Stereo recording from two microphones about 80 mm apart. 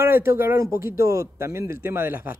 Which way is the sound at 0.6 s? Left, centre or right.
Right.